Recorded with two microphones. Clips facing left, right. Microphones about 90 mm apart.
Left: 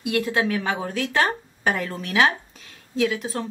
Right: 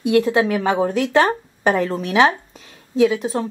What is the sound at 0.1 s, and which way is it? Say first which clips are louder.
Speech: right 6 dB; 20° right (ahead or behind).